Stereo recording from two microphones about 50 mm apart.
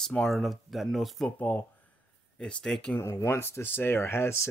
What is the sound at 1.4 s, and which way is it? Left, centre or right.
Speech, left.